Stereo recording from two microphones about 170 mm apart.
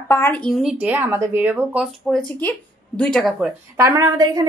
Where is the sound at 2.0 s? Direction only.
5° left (ahead or behind).